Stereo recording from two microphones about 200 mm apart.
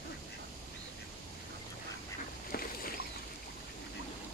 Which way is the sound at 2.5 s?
50° left (ahead or behind).